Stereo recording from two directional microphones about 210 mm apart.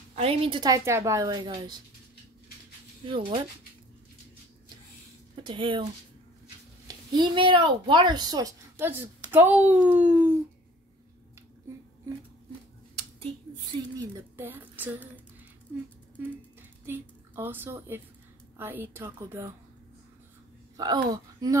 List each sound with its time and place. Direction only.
0.1 s a woman's voice: 25° right (ahead or behind)
3.1 s a woman's voice: 25° right (ahead or behind)
5.3 s speech: 25° right (ahead or behind)
6.9 s a woman's voice: 20° right (ahead or behind)
13.9 s speech: 10° right (ahead or behind)
17.4 s a woman's voice: 10° right (ahead or behind)
20.7 s speech: 20° right (ahead or behind)